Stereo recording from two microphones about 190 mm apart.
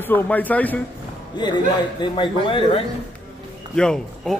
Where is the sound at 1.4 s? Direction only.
25° left (ahead or behind).